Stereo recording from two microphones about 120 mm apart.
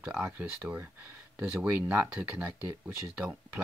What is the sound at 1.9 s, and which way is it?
Speech, 15° right (ahead or behind).